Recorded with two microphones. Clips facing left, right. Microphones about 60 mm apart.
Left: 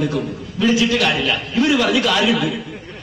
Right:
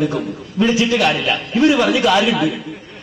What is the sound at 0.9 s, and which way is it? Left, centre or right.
Speech, centre.